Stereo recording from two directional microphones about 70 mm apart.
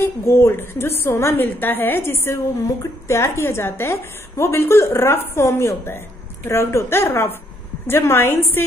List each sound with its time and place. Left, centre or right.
0.0 s a woman's voice: left